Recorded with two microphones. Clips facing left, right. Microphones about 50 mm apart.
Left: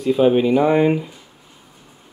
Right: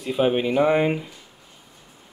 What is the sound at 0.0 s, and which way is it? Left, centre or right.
Speech, centre.